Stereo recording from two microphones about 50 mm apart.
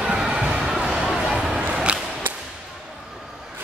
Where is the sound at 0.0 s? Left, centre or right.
Centre.